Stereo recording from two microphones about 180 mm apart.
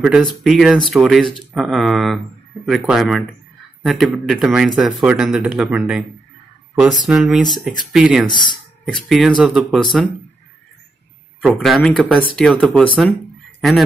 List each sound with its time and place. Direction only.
0.0 s speech: centre (ahead or behind)
8.3 s speech: 25° left (ahead or behind)
8.8 s speech: centre (ahead or behind)
11.4 s speech: centre (ahead or behind)